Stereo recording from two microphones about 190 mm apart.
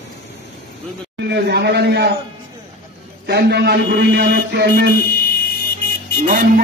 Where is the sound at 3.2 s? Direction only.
55° right (ahead or behind).